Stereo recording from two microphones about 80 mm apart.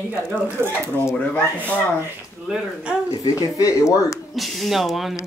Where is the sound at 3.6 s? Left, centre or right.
Left.